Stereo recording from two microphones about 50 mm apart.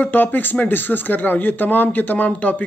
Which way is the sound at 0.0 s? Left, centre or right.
Left.